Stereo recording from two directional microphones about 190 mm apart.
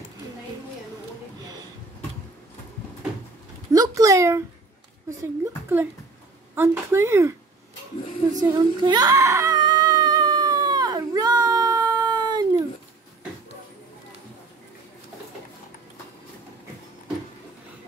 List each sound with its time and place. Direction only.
3.7 s a sound: 20° right (ahead or behind)
5.4 s speech: 10° right (ahead or behind)
8.3 s baby cry: 20° right (ahead or behind)